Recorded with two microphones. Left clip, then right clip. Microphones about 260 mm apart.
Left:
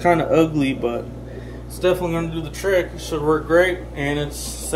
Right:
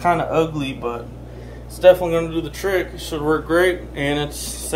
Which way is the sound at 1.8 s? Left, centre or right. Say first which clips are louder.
Right 7 dB; centre.